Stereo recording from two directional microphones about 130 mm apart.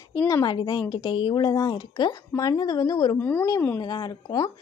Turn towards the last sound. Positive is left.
turn(degrees=30)  # may be behind; listen again after turning